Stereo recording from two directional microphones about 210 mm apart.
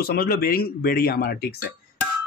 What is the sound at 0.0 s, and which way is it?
Speech, 45° left (ahead or behind).